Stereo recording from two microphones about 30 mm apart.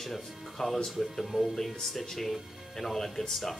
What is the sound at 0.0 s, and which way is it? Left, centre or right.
Speech, centre.